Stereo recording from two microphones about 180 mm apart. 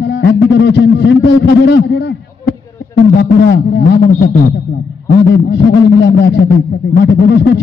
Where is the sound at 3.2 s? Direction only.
70° left (ahead or behind).